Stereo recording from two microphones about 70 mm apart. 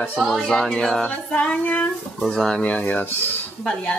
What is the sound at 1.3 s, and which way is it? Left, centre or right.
Speech, left.